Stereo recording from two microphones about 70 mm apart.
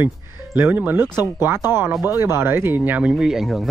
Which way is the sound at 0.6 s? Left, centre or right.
Right.